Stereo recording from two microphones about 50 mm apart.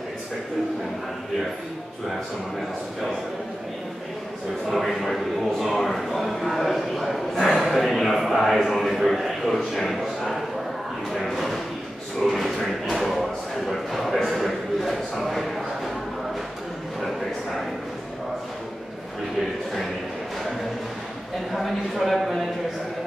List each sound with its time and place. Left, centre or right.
4.6 s a man's voice: centre
9.9 s a sound: centre
21.5 s speech: centre